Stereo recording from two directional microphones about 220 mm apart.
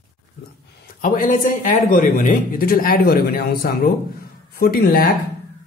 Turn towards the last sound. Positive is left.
turn(degrees=45)  # may be behind; listen again after turning